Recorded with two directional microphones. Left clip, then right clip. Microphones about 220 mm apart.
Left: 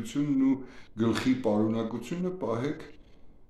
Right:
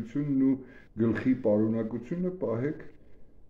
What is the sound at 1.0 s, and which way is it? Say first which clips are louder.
Speech: even; 5° left (ahead or behind).